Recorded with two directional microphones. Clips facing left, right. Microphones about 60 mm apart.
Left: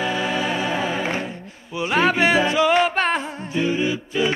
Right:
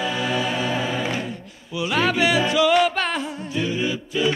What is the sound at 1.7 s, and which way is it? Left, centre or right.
Music, left.